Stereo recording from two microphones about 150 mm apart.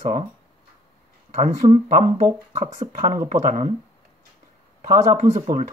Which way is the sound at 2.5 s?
50° right (ahead or behind).